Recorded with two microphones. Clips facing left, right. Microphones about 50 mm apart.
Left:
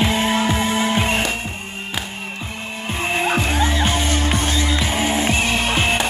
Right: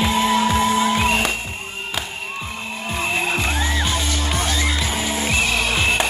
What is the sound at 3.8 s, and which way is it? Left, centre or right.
Music, left.